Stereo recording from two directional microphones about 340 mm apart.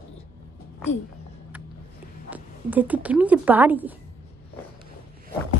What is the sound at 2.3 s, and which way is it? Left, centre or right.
Speech, centre.